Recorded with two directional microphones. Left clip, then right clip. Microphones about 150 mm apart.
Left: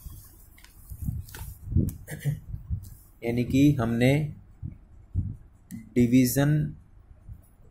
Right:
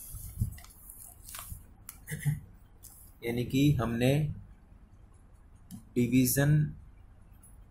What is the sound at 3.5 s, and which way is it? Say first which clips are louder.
Speech: left 6 dB; 25° left (ahead or behind).